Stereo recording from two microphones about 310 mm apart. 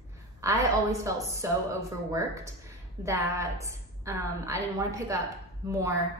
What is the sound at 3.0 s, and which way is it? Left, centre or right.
A woman's voice, centre.